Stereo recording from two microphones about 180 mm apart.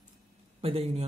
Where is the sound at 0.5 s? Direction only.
35° right (ahead or behind).